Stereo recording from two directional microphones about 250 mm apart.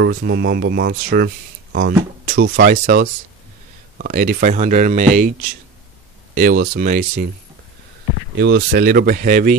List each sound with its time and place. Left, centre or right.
0.0 s speech: right
6.3 s speech: right
8.4 s speech: right